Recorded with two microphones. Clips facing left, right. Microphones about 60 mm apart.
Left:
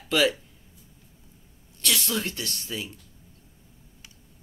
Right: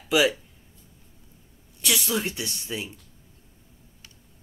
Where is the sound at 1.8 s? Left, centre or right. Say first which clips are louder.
Right 1 dB; centre.